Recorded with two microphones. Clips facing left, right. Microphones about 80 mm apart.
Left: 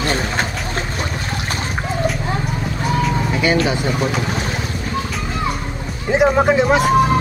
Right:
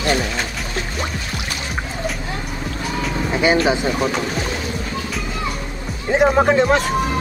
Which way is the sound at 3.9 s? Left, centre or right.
Centre.